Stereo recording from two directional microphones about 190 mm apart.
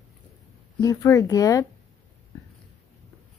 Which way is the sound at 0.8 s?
15° left (ahead or behind).